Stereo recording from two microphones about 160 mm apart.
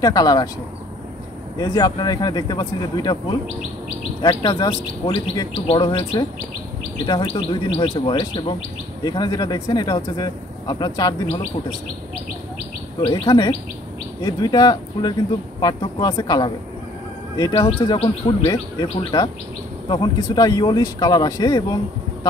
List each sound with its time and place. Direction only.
0.0 s bird: 25° left (ahead or behind)
1.6 s bird: 25° left (ahead or behind)
13.1 s bird: 25° left (ahead or behind)
17.4 s speech: 35° left (ahead or behind)
18.5 s bird: 25° left (ahead or behind)